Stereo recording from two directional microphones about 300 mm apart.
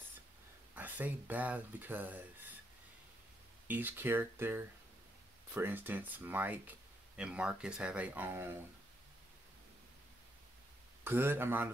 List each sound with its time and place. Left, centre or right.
0.7 s speech: centre
3.6 s speech: centre
11.1 s speech: centre